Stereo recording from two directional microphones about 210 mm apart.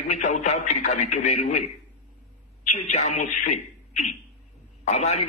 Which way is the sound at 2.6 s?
35° left (ahead or behind).